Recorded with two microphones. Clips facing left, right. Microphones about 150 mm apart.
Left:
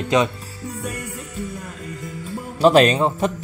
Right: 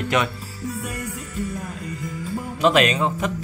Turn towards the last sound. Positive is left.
turn(degrees=35)  # may be behind; listen again after turning